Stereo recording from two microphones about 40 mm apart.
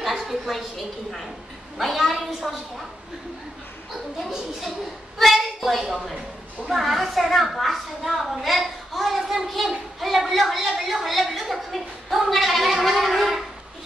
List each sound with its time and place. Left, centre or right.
0.0 s a woman's voice: centre
3.9 s a woman's voice: centre